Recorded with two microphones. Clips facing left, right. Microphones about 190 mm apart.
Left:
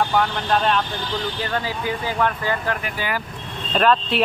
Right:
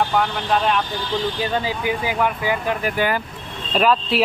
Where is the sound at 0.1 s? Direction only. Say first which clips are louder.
Even; 5° right (ahead or behind).